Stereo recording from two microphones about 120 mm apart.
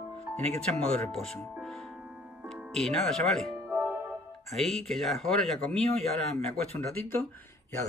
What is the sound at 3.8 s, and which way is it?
Music, 15° right (ahead or behind).